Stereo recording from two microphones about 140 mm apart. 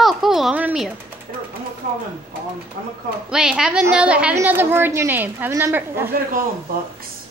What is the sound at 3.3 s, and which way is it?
A child's voice, 5° right (ahead or behind).